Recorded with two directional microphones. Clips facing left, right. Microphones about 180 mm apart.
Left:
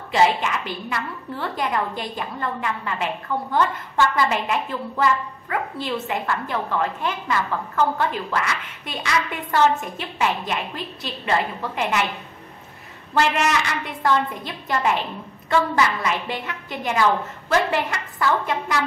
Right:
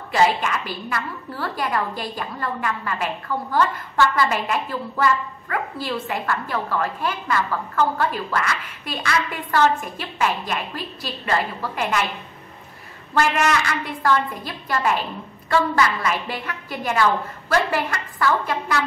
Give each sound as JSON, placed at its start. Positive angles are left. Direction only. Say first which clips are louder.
{"t": 0.1, "sound": "a woman's voice", "louder": "even", "side_deg": 20}
{"t": 13.1, "sound": "a woman's voice", "louder": "even", "side_deg": 20}